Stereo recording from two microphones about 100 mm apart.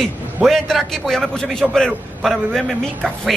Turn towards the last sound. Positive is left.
turn(degrees=0)  # may be behind; listen again after turning